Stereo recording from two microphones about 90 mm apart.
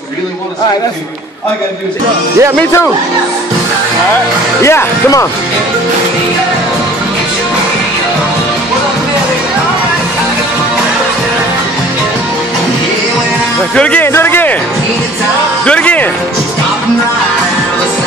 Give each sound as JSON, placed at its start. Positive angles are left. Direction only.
{"t": 4.6, "sound": "speech", "side_deg": 30}
{"t": 13.7, "sound": "speech", "side_deg": 15}
{"t": 14.0, "sound": "a sound", "side_deg": 25}
{"t": 15.6, "sound": "music", "side_deg": 15}